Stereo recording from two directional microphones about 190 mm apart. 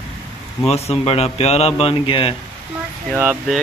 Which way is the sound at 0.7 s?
35° left (ahead or behind).